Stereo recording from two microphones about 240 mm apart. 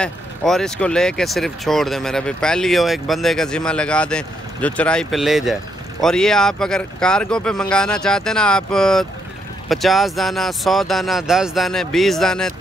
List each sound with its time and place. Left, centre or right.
0.0 s speech: centre